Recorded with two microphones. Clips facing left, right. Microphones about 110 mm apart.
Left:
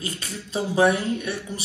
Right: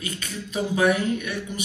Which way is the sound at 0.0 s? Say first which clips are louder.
Even; 30° left (ahead or behind).